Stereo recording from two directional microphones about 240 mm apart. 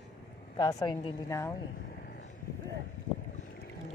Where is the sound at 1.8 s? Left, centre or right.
Left.